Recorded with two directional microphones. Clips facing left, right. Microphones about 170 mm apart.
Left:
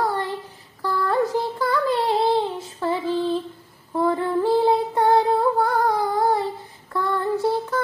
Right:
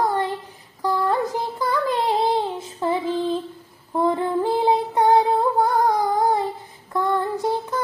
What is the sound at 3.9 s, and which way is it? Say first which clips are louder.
Female singing: even; 20° right (ahead or behind).